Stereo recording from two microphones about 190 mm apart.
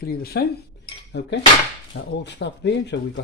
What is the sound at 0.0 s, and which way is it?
Speech, 55° left (ahead or behind).